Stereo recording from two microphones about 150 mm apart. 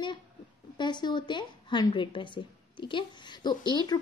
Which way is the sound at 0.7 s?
30° left (ahead or behind).